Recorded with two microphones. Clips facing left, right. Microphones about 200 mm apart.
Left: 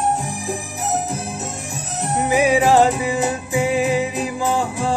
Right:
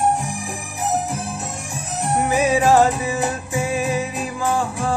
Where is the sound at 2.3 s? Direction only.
15° left (ahead or behind).